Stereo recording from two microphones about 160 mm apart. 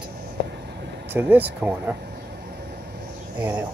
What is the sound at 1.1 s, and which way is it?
Speech, 10° right (ahead or behind).